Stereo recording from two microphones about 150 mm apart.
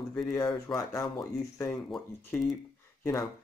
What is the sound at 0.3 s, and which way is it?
Speech, 25° left (ahead or behind).